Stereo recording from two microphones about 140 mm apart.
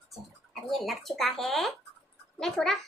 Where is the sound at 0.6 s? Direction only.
Centre (ahead or behind).